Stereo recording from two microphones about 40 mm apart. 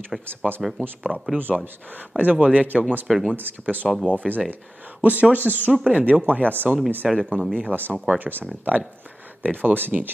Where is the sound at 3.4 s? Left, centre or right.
Right.